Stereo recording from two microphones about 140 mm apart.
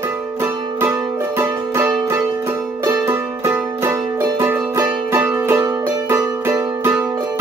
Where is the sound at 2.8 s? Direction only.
20° right (ahead or behind).